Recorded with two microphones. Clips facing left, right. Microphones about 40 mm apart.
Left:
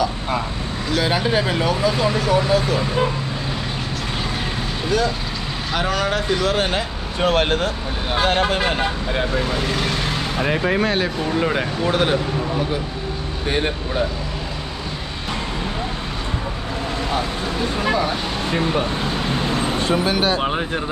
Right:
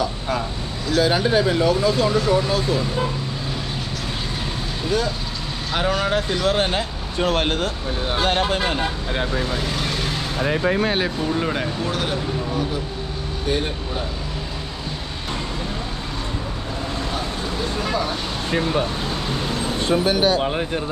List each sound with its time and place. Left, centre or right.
1.0 s speech: left
7.2 s speech: left
9.6 s speech: centre
11.2 s speech: centre
11.8 s speech: left
19.5 s vehicle: left
20.1 s speech: left
20.3 s speech: left